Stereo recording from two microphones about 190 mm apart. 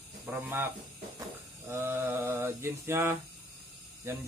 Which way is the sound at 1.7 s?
15° right (ahead or behind).